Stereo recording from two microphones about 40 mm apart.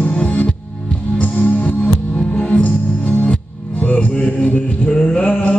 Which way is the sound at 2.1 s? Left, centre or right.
Left.